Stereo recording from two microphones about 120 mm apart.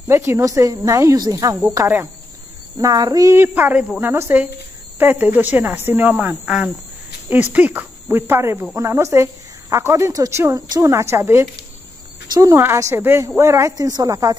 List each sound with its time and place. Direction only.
0.1 s speech: 25° right (ahead or behind)
2.8 s speech: 30° right (ahead or behind)